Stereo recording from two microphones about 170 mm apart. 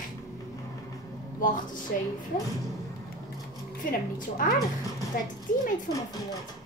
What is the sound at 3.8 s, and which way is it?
Speech, 55° left (ahead or behind).